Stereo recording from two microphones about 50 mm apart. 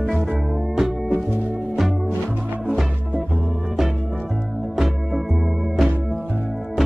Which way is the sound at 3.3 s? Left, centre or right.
Right.